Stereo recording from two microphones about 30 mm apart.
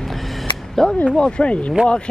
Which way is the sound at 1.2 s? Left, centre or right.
Left.